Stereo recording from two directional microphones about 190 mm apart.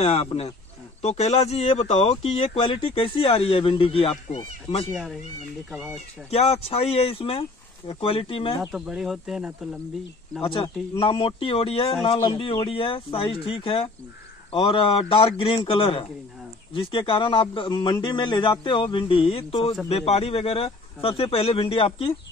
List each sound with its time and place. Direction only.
0.0 s speech: 30° left (ahead or behind)
4.8 s speech: centre (ahead or behind)
6.3 s speech: 30° left (ahead or behind)
8.7 s speech: 5° right (ahead or behind)
10.4 s speech: 30° left (ahead or behind)